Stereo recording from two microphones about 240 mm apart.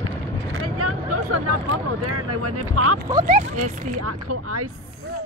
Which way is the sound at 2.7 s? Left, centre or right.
Right.